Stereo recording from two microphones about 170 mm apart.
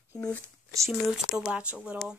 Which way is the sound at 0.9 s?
5° right (ahead or behind).